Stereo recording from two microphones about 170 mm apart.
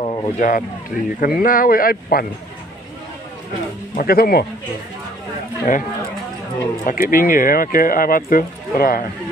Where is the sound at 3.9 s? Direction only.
65° left (ahead or behind).